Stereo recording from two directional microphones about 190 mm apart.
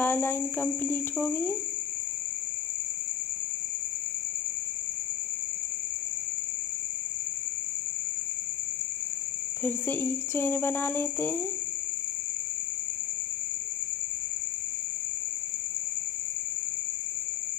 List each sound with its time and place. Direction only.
0.0 s speech: 10° left (ahead or behind)
9.6 s speech: 10° left (ahead or behind)